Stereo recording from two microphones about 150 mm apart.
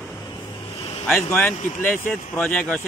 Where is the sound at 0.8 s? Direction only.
35° left (ahead or behind).